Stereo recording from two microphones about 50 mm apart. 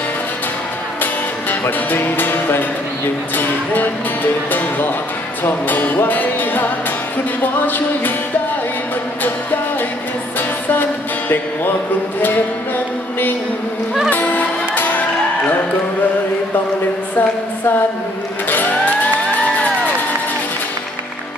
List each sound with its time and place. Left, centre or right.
1.5 s speech: left
10.7 s music: left
17.2 s a sound: left
18.5 s music: left